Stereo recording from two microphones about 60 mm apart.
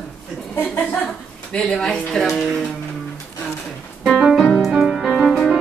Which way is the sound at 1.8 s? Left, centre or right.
Centre.